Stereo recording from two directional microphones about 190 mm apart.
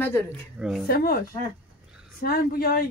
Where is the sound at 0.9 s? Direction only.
50° left (ahead or behind).